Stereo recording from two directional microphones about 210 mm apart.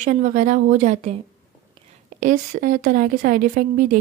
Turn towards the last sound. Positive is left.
turn(degrees=-40)  # may be behind; listen again after turning